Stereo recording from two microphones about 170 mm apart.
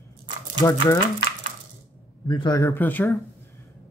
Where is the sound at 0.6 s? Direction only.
25° left (ahead or behind).